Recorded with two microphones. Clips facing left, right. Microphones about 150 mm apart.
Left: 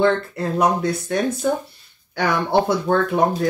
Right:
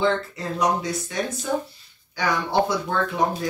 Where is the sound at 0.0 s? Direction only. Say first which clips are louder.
Left 5 dB; 55° left (ahead or behind).